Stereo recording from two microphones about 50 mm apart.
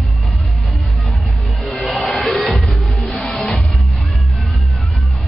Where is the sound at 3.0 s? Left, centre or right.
Left.